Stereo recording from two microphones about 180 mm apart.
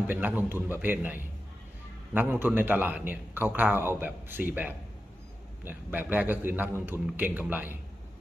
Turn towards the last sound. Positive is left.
turn(degrees=-10)  # may be behind; listen again after turning